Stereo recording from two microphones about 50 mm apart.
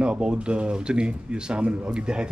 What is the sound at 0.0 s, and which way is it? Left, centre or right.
A man's voice, right.